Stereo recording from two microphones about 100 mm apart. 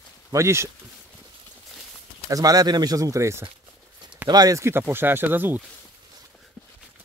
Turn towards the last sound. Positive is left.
turn(degrees=-20)  # may be behind; listen again after turning